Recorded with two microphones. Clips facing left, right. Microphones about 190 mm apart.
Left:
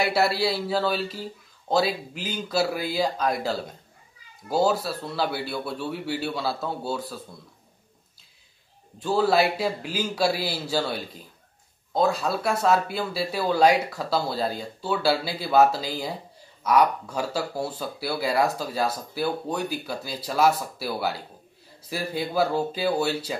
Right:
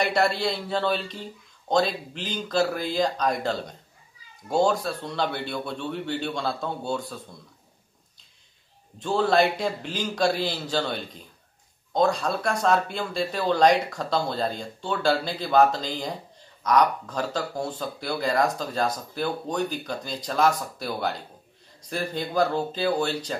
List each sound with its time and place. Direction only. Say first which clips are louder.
0.0 s speech: left 1 dB; 5° left (ahead or behind)
9.0 s speech: even; 5° left (ahead or behind)